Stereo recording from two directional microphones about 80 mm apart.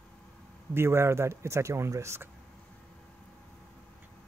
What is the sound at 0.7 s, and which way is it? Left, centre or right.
Speech, right.